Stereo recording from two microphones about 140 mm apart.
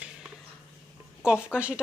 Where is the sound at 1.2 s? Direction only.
5° right (ahead or behind).